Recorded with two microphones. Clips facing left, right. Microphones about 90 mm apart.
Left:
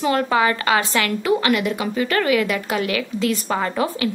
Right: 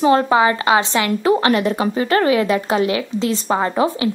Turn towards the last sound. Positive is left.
turn(degrees=-25)  # may be behind; listen again after turning